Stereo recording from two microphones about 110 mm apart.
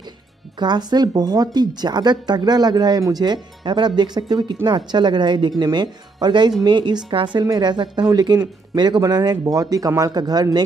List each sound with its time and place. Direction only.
0.6 s speech: 40° right (ahead or behind)